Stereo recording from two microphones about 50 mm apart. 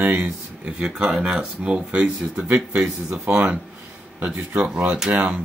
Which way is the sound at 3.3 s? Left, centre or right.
Right.